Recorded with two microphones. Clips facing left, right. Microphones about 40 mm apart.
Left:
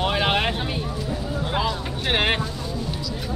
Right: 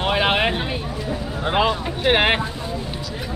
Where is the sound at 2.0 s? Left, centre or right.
Centre.